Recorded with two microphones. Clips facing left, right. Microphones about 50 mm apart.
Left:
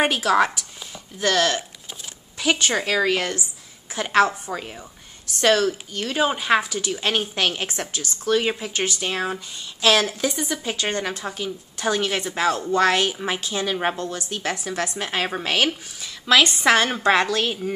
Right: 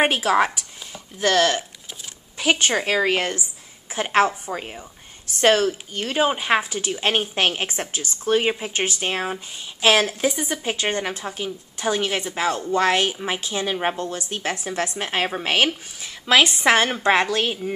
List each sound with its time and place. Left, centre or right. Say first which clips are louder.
0.0 s a woman's voice: even; centre
2.3 s a woman's voice: right 1 dB; right
10.3 s a woman's voice: right 1 dB; right